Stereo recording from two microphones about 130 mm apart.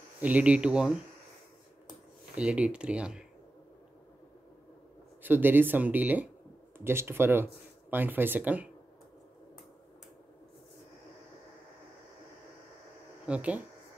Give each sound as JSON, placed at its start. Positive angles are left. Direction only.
{"t": 0.2, "sound": "speech", "side_deg": -10}
{"t": 2.3, "sound": "speech", "side_deg": -10}
{"t": 5.2, "sound": "speech", "side_deg": -15}
{"t": 13.3, "sound": "speech", "side_deg": -10}